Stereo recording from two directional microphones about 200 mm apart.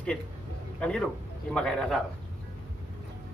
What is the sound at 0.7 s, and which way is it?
A man's voice, 5° left (ahead or behind).